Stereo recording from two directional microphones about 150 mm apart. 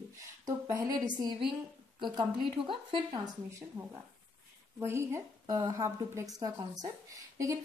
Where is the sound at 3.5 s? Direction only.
20° right (ahead or behind).